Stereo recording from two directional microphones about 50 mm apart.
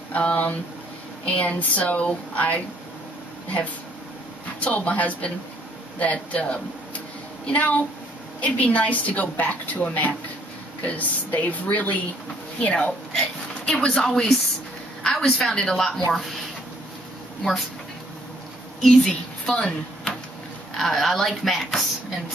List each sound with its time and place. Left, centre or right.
0.1 s speech: left
4.6 s a woman's voice: left
10.9 s a woman's voice: left
12.5 s a woman's voice: centre
17.4 s speech: centre
18.8 s a sound: centre
20.7 s speech: centre